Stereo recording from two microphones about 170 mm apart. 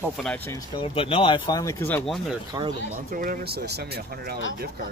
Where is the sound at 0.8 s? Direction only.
30° left (ahead or behind); by 2.1 s 15° left (ahead or behind).